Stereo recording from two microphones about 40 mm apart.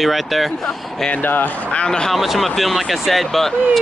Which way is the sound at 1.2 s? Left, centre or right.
Left.